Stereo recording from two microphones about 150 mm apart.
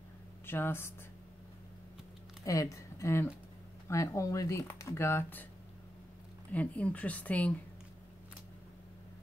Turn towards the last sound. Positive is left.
turn(degrees=10)  # may be behind; listen again after turning